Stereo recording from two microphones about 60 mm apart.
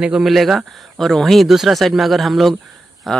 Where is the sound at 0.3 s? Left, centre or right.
Centre.